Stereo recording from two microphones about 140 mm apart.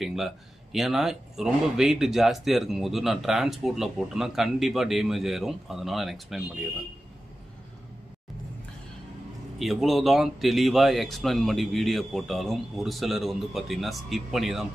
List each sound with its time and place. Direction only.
0.0 s a sound: centre (ahead or behind)
0.7 s speech: centre (ahead or behind)
9.6 s speech: centre (ahead or behind)